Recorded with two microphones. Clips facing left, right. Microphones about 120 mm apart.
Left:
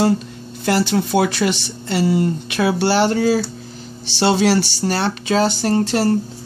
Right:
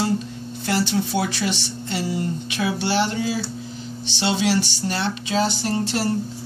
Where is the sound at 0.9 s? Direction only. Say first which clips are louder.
Left 6 dB; 65° left (ahead or behind).